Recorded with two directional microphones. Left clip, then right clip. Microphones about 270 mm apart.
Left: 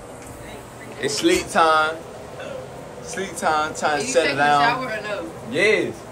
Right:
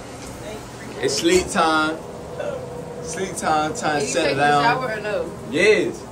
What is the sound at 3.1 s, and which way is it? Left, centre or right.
A man's voice, centre.